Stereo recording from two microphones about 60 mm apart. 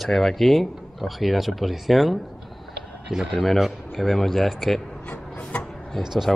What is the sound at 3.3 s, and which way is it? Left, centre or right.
Speech, centre.